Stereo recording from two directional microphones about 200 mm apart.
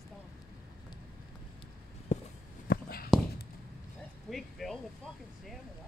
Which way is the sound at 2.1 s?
35° left (ahead or behind).